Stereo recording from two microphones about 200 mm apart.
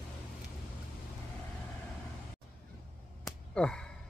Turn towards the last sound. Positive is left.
turn(degrees=5)  # may be behind; listen again after turning